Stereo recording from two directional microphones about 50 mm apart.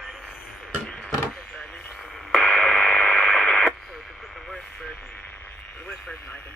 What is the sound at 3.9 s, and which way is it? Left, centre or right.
Radio, centre.